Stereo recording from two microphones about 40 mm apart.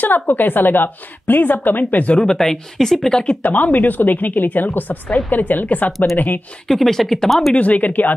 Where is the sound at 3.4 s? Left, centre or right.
Left.